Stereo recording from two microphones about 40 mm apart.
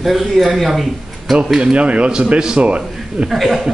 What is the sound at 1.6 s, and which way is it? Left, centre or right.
A man's voice, right.